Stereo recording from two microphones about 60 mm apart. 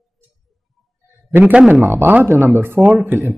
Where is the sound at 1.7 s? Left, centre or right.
Right.